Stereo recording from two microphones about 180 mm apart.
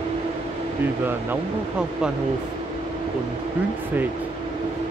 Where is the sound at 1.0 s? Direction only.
10° right (ahead or behind).